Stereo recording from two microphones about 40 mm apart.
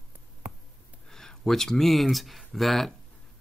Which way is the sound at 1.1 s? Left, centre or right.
Centre.